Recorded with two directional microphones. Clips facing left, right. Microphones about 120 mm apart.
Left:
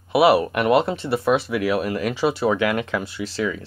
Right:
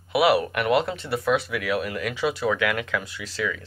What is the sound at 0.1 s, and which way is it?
Speech, 30° left (ahead or behind).